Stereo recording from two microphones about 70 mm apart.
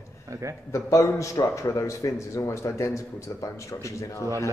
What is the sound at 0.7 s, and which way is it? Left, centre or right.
A man's voice, left.